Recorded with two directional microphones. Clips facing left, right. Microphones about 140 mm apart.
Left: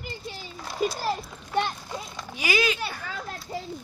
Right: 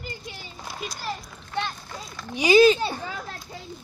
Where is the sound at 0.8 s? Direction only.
40° left (ahead or behind).